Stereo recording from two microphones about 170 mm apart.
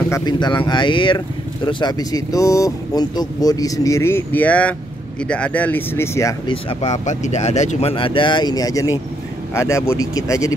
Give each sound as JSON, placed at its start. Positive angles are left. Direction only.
{"t": 0.1, "sound": "speech", "side_deg": 25}
{"t": 6.5, "sound": "speech", "side_deg": 35}